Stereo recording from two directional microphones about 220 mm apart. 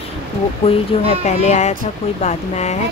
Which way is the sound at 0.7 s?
30° left (ahead or behind).